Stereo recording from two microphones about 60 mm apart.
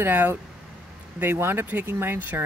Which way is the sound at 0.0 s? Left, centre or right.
Right.